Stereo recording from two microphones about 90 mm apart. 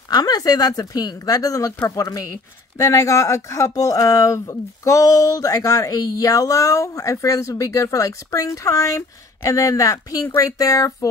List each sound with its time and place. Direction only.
0.1 s speech: 45° left (ahead or behind)